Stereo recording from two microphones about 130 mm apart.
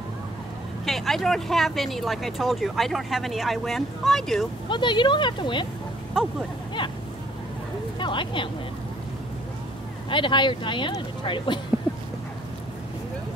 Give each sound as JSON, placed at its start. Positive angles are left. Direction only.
{"t": 0.8, "sound": "speech", "side_deg": 0}
{"t": 4.6, "sound": "speech", "side_deg": 35}
{"t": 6.2, "sound": "speech", "side_deg": -5}
{"t": 8.0, "sound": "speech", "side_deg": 40}
{"t": 10.0, "sound": "speech", "side_deg": 40}